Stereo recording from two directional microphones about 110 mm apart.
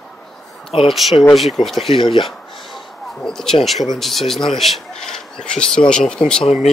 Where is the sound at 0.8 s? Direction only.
Centre (ahead or behind).